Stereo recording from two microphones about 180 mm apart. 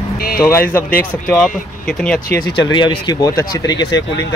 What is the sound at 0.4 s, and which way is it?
Speech, 15° left (ahead or behind).